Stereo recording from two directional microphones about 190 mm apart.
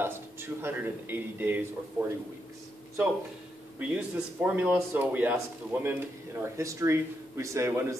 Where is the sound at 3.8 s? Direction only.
5° right (ahead or behind).